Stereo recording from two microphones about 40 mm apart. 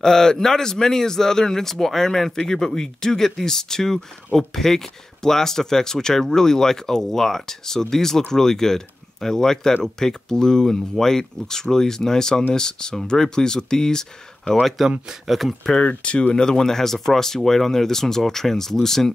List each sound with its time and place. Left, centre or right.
0.0 s speech: centre
14.8 s speech: centre
15.8 s speech: left
16.3 s speech: centre